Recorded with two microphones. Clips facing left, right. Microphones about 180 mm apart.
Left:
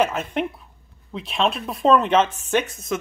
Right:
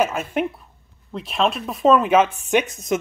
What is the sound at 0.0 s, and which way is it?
Speech, 5° right (ahead or behind).